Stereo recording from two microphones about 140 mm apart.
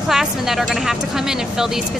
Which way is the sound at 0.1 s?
5° right (ahead or behind).